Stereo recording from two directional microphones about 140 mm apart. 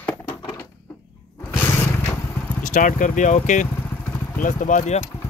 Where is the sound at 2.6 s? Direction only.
65° left (ahead or behind).